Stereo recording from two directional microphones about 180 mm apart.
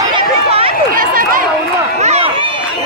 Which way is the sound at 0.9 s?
50° right (ahead or behind).